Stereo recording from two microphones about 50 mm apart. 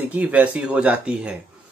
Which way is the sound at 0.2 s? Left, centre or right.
Right.